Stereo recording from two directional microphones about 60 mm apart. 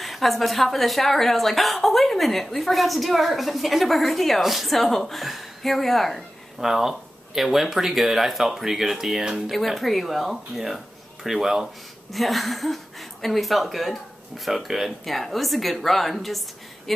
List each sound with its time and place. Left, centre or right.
0.0 s a woman's voice: centre